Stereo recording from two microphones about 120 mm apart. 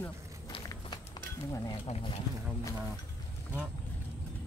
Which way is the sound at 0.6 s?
30° left (ahead or behind).